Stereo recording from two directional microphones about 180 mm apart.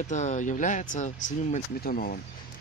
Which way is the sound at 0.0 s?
40° left (ahead or behind).